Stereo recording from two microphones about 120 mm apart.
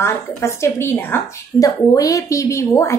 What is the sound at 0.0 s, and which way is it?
Speech, 20° left (ahead or behind).